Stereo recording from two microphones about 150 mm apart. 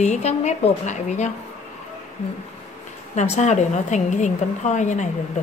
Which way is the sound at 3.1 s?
50° left (ahead or behind).